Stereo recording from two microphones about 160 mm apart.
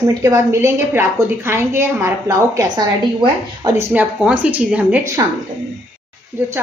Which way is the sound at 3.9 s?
10° right (ahead or behind).